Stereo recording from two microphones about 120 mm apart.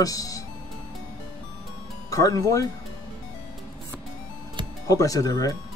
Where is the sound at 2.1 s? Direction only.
30° left (ahead or behind).